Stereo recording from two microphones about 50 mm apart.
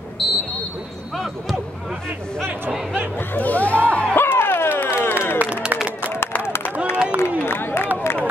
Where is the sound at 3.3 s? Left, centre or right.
Left.